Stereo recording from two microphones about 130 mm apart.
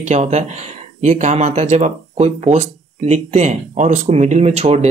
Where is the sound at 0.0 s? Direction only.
60° right (ahead or behind).